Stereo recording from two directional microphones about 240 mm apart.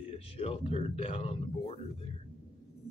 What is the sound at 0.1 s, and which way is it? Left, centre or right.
A man's voice, left.